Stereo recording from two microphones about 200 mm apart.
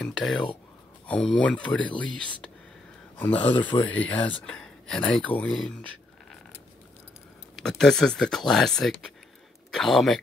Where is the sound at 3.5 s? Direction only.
25° left (ahead or behind).